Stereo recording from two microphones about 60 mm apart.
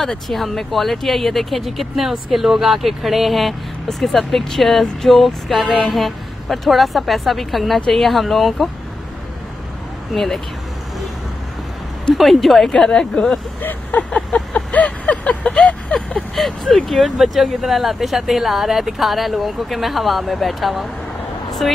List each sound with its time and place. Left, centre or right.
0.0 s speech: centre
10.1 s speech: centre
12.1 s speech: centre
12.7 s speech: centre
13.6 s speech: left
14.1 s vehicle: centre
16.2 s speech: centre